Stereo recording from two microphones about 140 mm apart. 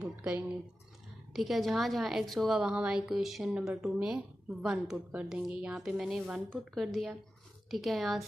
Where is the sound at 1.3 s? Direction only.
Centre (ahead or behind).